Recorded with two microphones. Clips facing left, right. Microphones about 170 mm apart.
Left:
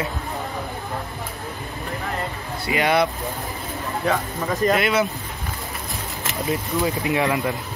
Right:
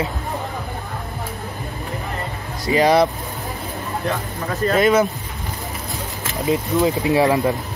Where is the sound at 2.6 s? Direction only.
35° right (ahead or behind).